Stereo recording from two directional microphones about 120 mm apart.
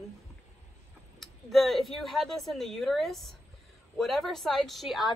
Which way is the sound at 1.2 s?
Centre (ahead or behind).